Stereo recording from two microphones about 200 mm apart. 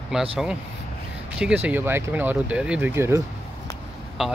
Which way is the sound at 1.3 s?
5° right (ahead or behind).